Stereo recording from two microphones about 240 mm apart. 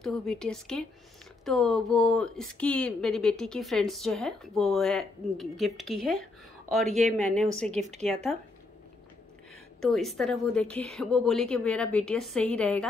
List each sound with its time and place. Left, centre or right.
0.0 s speech: centre
7.7 s speech: right
8.0 s speech: centre
9.8 s speech: centre